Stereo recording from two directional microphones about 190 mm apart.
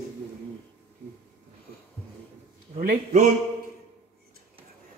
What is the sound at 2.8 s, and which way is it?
Speech, 50° right (ahead or behind).